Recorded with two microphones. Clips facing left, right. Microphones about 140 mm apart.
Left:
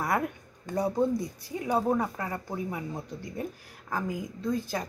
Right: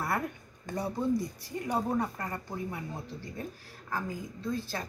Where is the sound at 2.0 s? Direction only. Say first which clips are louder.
Left 2 dB; 10° left (ahead or behind).